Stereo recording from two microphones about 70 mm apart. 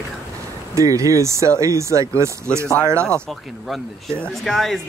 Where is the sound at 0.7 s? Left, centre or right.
Right.